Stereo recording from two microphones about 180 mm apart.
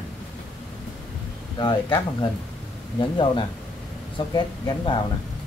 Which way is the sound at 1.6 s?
25° left (ahead or behind).